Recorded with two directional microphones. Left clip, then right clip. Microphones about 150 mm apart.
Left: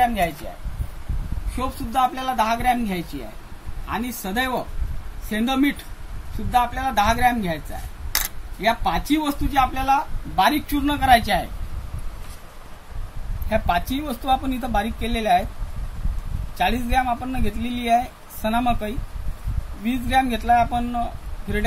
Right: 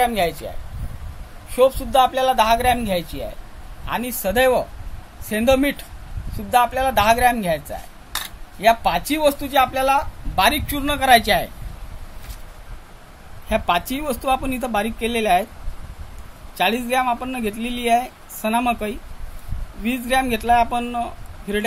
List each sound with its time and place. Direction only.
0.0 s speech: 70° right (ahead or behind)
1.5 s speech: 65° right (ahead or behind)
13.5 s speech: 50° right (ahead or behind)
16.5 s speech: 55° right (ahead or behind)